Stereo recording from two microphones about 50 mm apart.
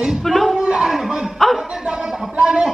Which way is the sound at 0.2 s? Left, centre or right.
Centre.